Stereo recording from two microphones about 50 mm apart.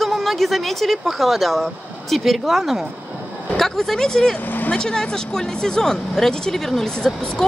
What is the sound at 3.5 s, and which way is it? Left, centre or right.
Speech, centre.